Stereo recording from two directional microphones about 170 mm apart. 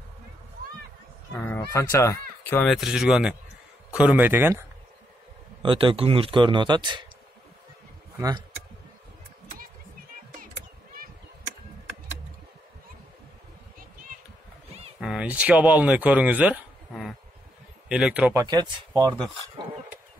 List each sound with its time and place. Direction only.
1.7 s speech: 15° left (ahead or behind)
2.6 s speech: centre (ahead or behind)
5.6 s speech: 30° right (ahead or behind)
15.0 s speech: 5° right (ahead or behind)
17.8 s speech: 5° right (ahead or behind)
18.4 s speech: 20° right (ahead or behind)